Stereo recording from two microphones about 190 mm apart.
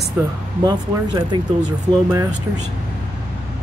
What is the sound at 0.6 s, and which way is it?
Speech, 25° right (ahead or behind).